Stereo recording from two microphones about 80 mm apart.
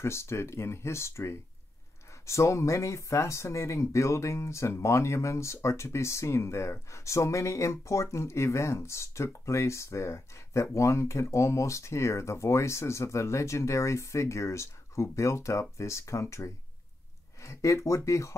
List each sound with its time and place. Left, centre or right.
0.0 s speech: left